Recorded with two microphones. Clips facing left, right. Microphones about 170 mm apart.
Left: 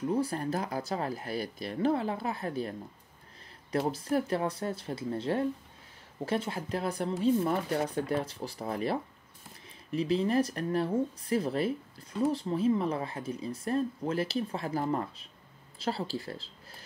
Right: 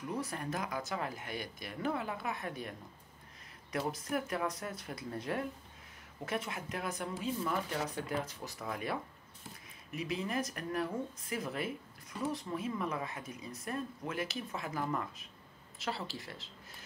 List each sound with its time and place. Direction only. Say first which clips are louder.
0.0 s speech: left 8 dB; 30° left (ahead or behind)
3.7 s speech: left 7 dB; 30° left (ahead or behind)